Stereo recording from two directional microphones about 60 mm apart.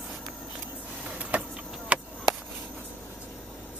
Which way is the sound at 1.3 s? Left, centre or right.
Right.